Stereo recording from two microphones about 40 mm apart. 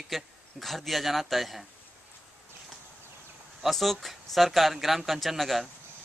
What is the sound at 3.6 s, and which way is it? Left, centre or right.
Speech, centre.